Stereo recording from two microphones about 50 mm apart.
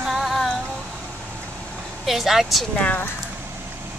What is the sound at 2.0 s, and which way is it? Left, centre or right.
Speech, centre.